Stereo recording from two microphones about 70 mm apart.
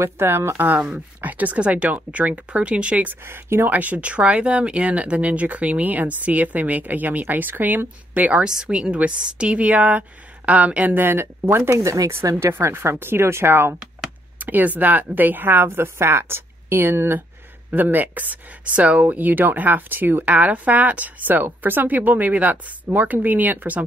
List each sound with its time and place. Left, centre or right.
0.0 s speech: right
0.6 s speech: right
3.3 s a woman's voice: right
3.7 s a woman's voice: right
14.4 s a woman's voice: right
17.7 s speech: right